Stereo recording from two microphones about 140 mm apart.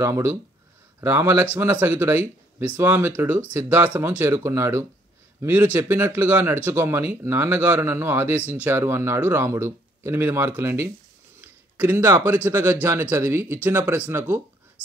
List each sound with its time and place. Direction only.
0.0 s speech: 20° right (ahead or behind)
11.4 s a sound: 15° right (ahead or behind)
12.4 s speech: 15° right (ahead or behind)